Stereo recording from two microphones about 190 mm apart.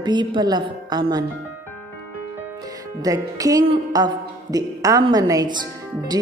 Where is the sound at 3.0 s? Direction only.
20° right (ahead or behind).